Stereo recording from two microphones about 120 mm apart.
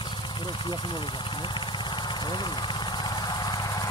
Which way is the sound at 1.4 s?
40° left (ahead or behind).